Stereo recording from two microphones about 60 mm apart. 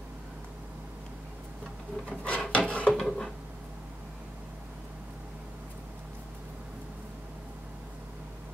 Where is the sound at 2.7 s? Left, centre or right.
Left.